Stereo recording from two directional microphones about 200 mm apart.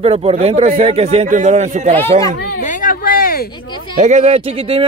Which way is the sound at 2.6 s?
40° left (ahead or behind).